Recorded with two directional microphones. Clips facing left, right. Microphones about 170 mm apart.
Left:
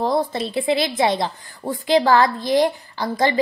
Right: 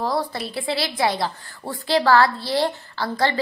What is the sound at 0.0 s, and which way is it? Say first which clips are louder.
A woman's voice: left 4 dB; 20° left (ahead or behind).